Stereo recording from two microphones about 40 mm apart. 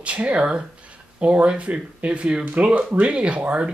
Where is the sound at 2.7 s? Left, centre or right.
Right.